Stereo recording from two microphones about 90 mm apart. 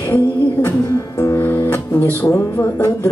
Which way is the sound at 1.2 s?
30° left (ahead or behind).